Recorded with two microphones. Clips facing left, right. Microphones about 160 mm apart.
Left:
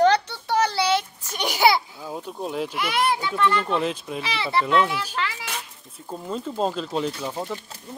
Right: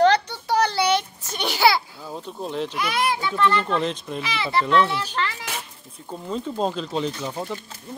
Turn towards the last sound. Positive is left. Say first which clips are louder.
# even
turn(degrees=5)  # may be behind; listen again after turning